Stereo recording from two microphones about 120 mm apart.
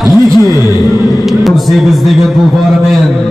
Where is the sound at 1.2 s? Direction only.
Centre (ahead or behind).